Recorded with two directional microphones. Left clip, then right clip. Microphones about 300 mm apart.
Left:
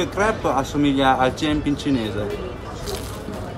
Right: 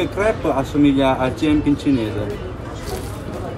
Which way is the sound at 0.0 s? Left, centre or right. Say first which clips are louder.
Right 2 dB; centre.